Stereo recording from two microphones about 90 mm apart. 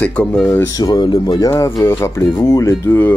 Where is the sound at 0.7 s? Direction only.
45° left (ahead or behind).